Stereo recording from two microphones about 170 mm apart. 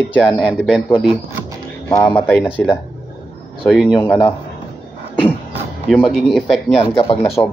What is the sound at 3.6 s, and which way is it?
Speech, centre (ahead or behind).